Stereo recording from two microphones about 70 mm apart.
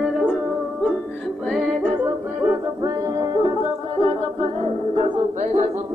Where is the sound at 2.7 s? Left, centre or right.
Right.